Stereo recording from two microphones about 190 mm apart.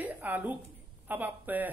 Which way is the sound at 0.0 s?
10° right (ahead or behind).